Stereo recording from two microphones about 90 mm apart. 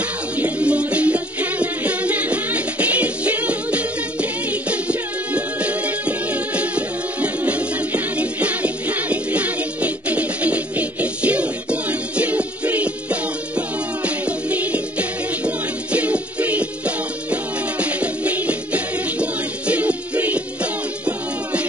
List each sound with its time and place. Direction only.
0.4 s music: 15° right (ahead or behind)